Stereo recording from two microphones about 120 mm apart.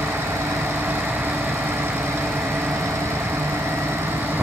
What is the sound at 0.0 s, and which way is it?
Vehicle, 20° right (ahead or behind).